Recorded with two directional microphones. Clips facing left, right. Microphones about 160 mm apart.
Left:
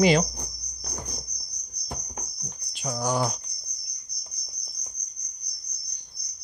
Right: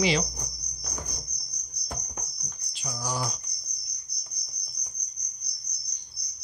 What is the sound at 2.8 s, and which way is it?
Cricket, 55° left (ahead or behind).